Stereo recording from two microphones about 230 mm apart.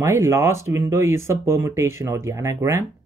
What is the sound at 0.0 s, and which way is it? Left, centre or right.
Speech, centre.